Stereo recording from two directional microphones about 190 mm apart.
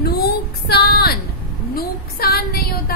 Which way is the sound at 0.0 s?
55° left (ahead or behind).